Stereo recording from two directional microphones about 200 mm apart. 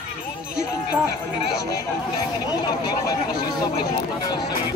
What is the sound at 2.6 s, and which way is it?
Speech, 20° left (ahead or behind).